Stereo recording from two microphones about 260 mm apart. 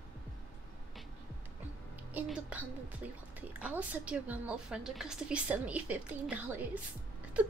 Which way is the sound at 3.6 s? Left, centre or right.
Centre.